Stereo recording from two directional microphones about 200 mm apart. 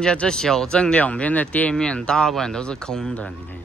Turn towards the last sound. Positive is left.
turn(degrees=5)  # may be behind; listen again after turning